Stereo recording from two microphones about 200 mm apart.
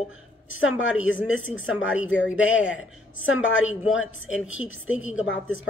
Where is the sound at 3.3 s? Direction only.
75° left (ahead or behind).